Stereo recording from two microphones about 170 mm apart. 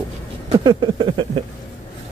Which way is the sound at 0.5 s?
30° right (ahead or behind).